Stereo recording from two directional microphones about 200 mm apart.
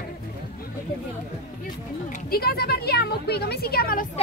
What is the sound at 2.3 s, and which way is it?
A woman's voice, 50° left (ahead or behind).